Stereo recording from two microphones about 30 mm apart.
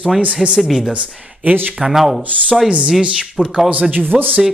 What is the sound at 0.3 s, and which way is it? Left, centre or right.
Speech, right.